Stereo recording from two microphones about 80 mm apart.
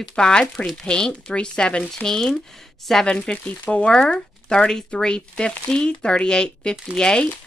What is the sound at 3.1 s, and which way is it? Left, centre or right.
Speech, centre.